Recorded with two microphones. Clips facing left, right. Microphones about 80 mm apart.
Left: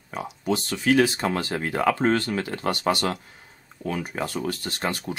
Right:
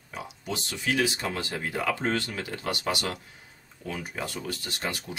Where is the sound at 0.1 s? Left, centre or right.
Left.